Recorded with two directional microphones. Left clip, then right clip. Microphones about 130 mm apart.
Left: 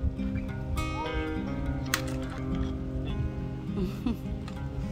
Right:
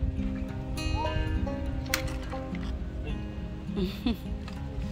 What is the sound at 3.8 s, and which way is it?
Music, 20° left (ahead or behind).